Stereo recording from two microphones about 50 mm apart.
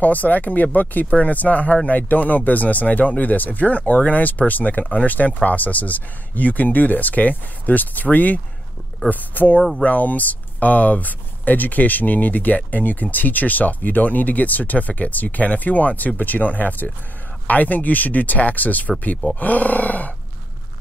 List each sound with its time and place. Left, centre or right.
0.0 s speech: left
9.6 s speech: centre
9.8 s speech: left